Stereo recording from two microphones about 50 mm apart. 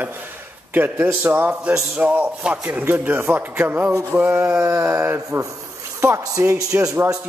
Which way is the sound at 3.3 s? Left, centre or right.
Right.